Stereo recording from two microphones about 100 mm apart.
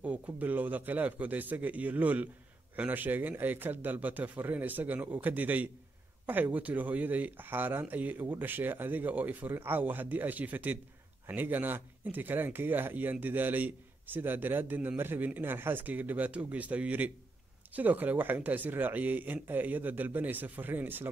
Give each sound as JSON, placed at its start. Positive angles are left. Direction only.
{"t": 0.0, "sound": "speech", "side_deg": -15}